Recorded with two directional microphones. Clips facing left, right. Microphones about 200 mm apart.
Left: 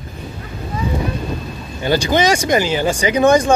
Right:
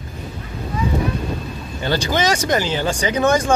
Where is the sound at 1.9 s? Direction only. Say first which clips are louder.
Left 4 dB; 15° left (ahead or behind).